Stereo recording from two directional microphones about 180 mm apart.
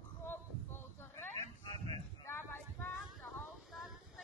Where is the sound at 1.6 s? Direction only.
25° left (ahead or behind).